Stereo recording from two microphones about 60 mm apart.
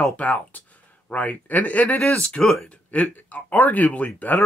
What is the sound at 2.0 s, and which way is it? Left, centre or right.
Speech, centre.